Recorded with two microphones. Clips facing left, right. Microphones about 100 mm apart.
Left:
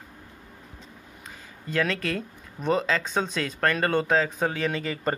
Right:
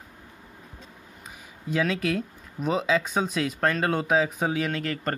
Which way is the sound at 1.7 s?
10° right (ahead or behind).